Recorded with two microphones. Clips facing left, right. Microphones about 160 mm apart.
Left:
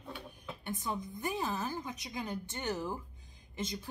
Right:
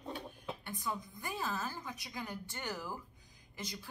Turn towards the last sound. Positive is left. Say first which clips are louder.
# left 6 dB
turn(degrees=20)  # may be behind; listen again after turning